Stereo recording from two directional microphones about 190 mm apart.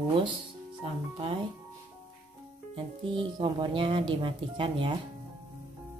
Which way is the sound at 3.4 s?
25° right (ahead or behind).